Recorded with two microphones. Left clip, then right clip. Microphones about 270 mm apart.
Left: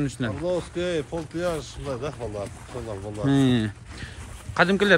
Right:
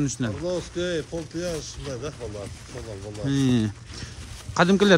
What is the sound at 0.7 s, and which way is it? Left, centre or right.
Speech, left.